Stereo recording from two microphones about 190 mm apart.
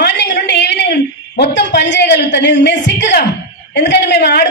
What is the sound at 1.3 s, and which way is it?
A woman's voice, 60° left (ahead or behind).